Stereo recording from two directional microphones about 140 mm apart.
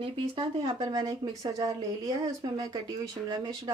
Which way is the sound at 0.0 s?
35° right (ahead or behind).